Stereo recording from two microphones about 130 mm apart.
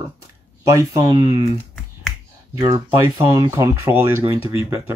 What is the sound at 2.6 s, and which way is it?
Speech, 25° right (ahead or behind).